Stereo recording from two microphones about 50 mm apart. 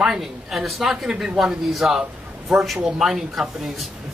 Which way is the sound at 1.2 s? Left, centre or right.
Centre.